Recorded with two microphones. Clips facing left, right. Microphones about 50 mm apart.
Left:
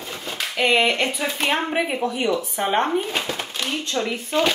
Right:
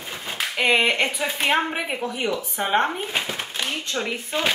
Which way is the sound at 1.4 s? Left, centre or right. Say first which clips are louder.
Even; centre.